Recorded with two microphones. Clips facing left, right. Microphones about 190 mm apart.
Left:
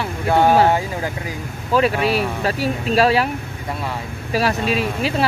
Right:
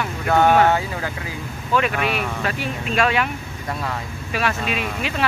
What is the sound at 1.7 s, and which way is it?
Speech, 35° left (ahead or behind).